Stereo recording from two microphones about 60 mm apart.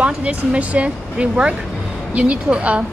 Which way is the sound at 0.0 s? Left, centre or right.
Centre.